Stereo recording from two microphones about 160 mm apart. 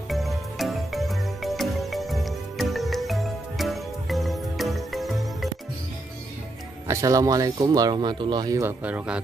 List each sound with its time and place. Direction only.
0.1 s music: centre (ahead or behind)
6.9 s speech: 20° right (ahead or behind)